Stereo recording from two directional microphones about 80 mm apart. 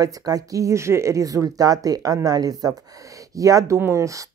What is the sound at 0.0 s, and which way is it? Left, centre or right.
Speech, right.